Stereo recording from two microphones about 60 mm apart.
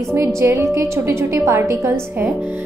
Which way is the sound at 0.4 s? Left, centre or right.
Right.